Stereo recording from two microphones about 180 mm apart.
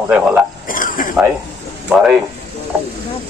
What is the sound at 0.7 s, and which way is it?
Stir, 50° left (ahead or behind).